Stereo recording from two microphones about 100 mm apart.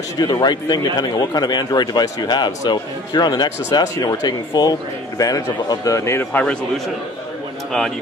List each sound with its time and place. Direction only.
0.2 s a man's voice: 45° left (ahead or behind)
6.3 s a man's voice: 10° left (ahead or behind)